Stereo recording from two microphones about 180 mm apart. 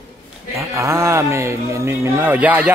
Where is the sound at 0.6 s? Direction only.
15° right (ahead or behind).